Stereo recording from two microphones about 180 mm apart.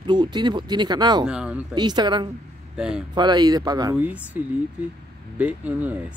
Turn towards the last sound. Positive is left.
turn(degrees=-10)  # may be behind; listen again after turning